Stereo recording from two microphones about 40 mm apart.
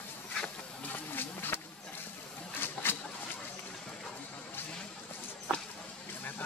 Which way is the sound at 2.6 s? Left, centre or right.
Left.